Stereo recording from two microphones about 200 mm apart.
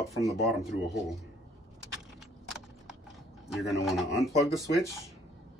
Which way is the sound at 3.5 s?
Centre (ahead or behind).